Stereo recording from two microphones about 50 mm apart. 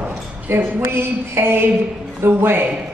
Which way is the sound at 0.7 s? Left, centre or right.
Right.